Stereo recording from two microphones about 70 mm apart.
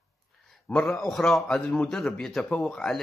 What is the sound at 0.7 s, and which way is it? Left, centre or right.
Speech, left.